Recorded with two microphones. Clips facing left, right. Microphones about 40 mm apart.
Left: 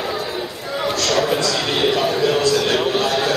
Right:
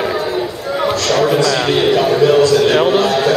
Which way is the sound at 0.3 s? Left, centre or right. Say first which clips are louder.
Right 6 dB; centre.